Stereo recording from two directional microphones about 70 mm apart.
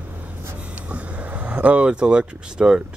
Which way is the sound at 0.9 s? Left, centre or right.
Centre.